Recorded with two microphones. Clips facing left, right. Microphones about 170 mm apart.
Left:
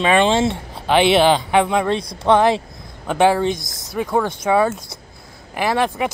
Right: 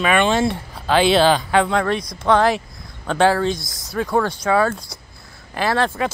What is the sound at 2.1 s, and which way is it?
Speech, 25° left (ahead or behind).